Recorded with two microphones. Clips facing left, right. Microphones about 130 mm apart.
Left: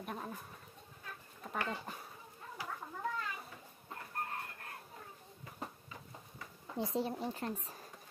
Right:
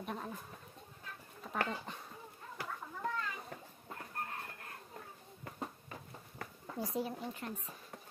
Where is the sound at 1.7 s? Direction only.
5° left (ahead or behind).